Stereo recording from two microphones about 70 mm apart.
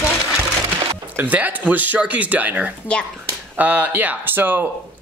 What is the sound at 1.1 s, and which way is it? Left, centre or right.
Speech, right.